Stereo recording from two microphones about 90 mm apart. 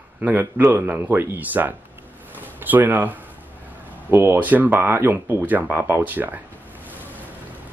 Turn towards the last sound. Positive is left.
turn(degrees=-20)  # may be behind; listen again after turning